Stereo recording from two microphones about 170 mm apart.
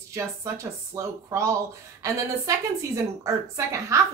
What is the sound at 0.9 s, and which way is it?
Speech, 15° right (ahead or behind).